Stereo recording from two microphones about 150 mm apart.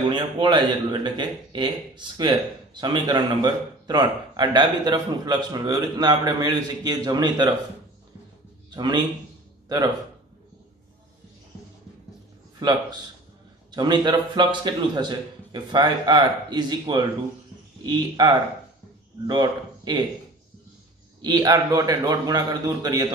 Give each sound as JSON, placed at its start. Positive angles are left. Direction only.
{"t": 0.1, "sound": "a man's voice", "side_deg": -30}
{"t": 8.6, "sound": "a man's voice", "side_deg": -30}
{"t": 12.6, "sound": "a man's voice", "side_deg": -25}
{"t": 21.2, "sound": "a man's voice", "side_deg": -25}